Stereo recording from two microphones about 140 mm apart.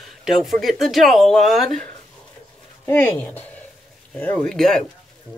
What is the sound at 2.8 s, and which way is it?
Speech, 15° left (ahead or behind).